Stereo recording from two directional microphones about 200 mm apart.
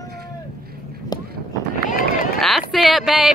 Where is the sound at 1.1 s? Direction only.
20° left (ahead or behind).